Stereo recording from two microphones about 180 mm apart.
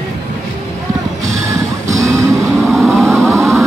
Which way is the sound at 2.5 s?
Centre (ahead or behind).